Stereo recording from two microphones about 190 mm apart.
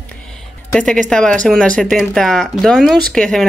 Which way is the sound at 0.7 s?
5° left (ahead or behind).